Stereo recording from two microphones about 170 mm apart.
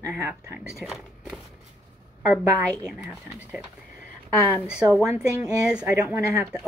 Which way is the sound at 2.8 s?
5° right (ahead or behind).